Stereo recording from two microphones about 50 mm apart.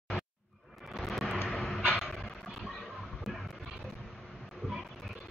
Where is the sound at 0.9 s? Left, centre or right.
Centre.